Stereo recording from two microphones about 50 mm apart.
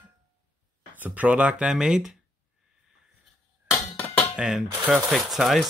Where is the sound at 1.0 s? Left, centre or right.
Right.